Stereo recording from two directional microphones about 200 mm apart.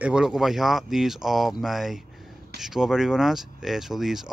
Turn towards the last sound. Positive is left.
turn(degrees=0)  # may be behind; listen again after turning